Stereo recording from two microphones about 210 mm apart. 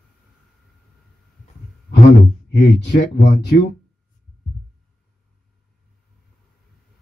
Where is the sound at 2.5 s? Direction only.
55° left (ahead or behind).